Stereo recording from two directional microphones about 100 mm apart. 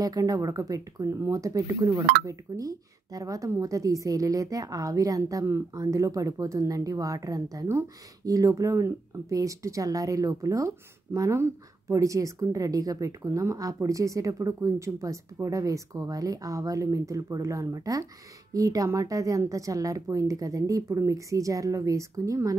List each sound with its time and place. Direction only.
0.0 s speech: 35° right (ahead or behind)